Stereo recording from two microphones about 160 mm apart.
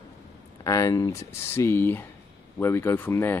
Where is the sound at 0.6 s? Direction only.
20° left (ahead or behind).